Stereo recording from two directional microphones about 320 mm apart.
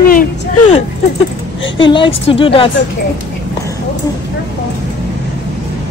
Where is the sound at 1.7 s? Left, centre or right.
Centre.